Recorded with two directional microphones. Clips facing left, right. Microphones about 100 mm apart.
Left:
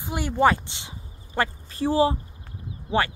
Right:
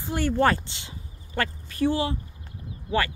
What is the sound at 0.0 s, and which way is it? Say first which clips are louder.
Speech: left 1 dB; 15° left (ahead or behind).